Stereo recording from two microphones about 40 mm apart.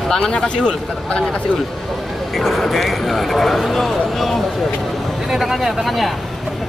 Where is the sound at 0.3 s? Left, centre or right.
Left.